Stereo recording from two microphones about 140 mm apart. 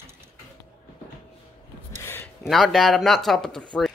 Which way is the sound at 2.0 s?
15° left (ahead or behind).